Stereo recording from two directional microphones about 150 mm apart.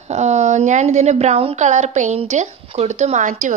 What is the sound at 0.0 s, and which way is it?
A woman's voice, 50° right (ahead or behind).